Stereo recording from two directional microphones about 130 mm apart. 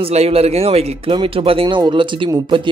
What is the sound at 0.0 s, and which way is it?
A man's voice, 50° right (ahead or behind).